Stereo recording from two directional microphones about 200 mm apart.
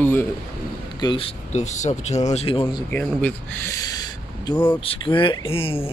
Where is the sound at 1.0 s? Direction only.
25° left (ahead or behind).